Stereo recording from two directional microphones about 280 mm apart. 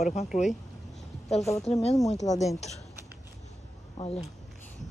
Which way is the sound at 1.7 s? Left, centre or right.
Centre.